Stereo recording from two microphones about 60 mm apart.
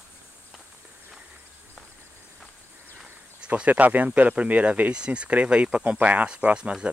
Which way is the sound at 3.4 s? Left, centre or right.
Right.